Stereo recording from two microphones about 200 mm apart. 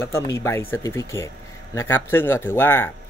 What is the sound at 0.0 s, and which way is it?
Speech, 15° left (ahead or behind).